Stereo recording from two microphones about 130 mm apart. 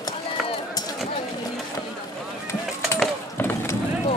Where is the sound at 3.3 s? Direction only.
15° left (ahead or behind).